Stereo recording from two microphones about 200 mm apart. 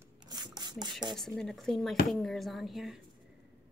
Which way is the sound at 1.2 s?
Centre (ahead or behind).